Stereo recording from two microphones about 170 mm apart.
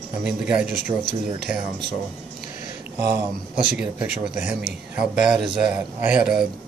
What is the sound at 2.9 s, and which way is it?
Speech, 10° right (ahead or behind).